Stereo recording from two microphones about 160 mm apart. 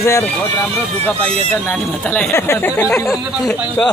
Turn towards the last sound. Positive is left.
turn(degrees=5)  # may be behind; listen again after turning